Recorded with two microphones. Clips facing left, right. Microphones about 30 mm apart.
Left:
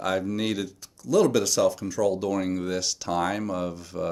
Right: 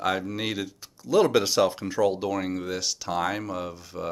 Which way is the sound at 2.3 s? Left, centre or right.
Centre.